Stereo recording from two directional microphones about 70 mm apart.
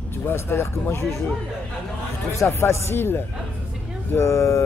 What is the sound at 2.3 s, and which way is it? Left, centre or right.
Speech, left.